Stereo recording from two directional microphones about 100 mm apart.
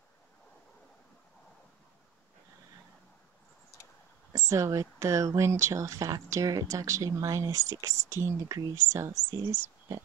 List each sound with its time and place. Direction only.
4.3 s speech: 35° right (ahead or behind)